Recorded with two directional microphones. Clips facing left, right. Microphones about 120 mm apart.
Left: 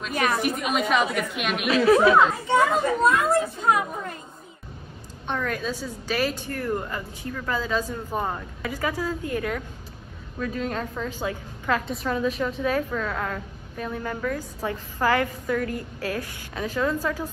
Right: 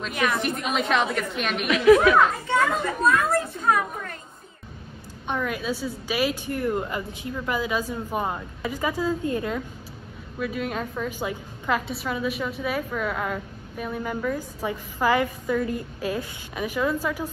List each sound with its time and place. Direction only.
0.6 s a woman's voice: centre (ahead or behind)
1.7 s speech: 35° left (ahead or behind)
2.4 s a child's voice: 20° left (ahead or behind)
3.5 s a sound: 25° left (ahead or behind)
5.2 s a woman's voice: 10° right (ahead or behind)
10.4 s a woman's voice: 10° right (ahead or behind)